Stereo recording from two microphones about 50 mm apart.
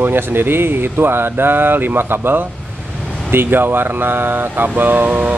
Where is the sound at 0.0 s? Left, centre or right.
Right.